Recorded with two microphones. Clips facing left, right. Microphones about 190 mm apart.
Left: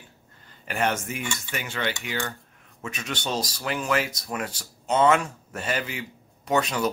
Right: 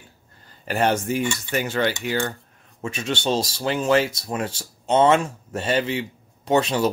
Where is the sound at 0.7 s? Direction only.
35° right (ahead or behind).